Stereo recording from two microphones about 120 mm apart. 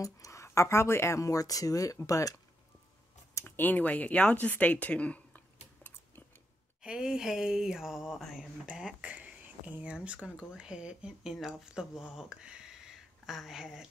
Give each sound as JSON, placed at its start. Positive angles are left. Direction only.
{"t": 0.0, "sound": "speech", "side_deg": 25}
{"t": 3.3, "sound": "speech", "side_deg": 20}
{"t": 6.8, "sound": "speech", "side_deg": -5}